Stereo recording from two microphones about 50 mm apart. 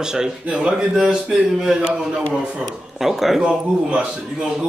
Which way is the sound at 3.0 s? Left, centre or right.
Centre.